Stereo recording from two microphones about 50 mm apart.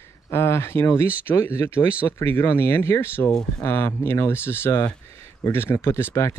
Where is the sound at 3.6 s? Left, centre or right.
Left.